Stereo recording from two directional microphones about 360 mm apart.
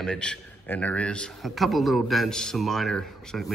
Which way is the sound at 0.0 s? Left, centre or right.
Centre.